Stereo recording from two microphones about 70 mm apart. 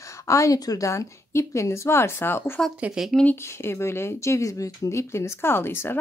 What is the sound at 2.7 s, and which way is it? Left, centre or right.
Speech, centre.